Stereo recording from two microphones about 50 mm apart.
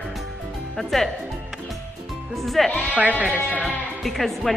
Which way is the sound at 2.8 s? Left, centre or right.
Right.